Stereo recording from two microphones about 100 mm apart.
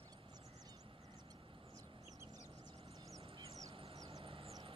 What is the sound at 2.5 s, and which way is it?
Vehicle, 45° right (ahead or behind).